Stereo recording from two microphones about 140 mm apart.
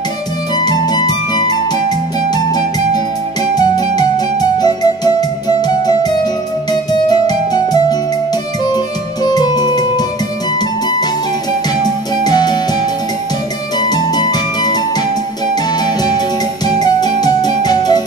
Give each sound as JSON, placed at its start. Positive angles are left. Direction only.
{"t": 0.7, "sound": "music", "side_deg": 30}
{"t": 12.2, "sound": "music", "side_deg": 30}
{"t": 13.7, "sound": "music", "side_deg": 30}